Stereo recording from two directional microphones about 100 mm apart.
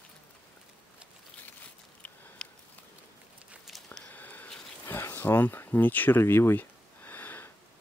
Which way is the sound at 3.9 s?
15° left (ahead or behind).